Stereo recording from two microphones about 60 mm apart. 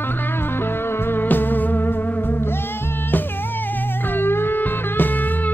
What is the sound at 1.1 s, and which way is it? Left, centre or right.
Music, left.